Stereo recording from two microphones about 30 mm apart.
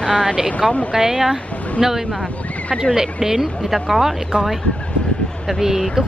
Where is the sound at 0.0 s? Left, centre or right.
Left.